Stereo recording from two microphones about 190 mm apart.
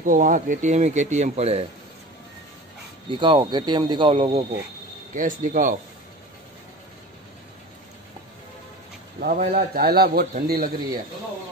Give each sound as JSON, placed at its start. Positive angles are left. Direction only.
{"t": 0.0, "sound": "speech", "side_deg": -45}
{"t": 3.1, "sound": "speech", "side_deg": -25}
{"t": 5.1, "sound": "a man's voice", "side_deg": -45}
{"t": 9.2, "sound": "a man's voice", "side_deg": -50}